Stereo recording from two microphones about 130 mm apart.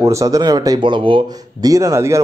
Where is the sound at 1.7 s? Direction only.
25° right (ahead or behind).